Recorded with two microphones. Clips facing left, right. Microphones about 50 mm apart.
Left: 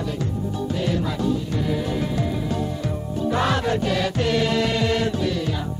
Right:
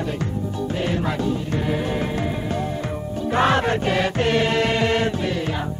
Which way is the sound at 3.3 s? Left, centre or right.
Right.